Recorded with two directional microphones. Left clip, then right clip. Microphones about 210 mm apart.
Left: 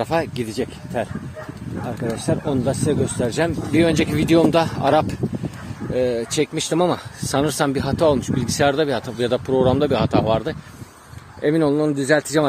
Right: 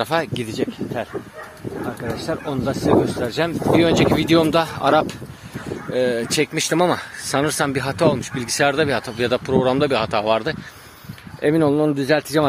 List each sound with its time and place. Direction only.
0.0 s speech: 15° left (ahead or behind)
2.2 s speech: 25° left (ahead or behind)
5.9 s speech: 5° left (ahead or behind)
7.2 s speech: 15° left (ahead or behind)